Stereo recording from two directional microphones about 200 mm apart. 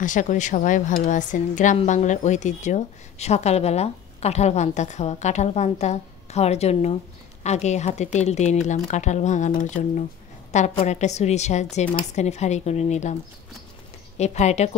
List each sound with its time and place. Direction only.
0.0 s a woman's voice: 40° left (ahead or behind)